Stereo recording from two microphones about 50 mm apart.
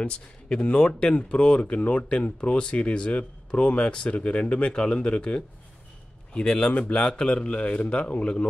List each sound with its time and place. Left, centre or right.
0.0 s speech: left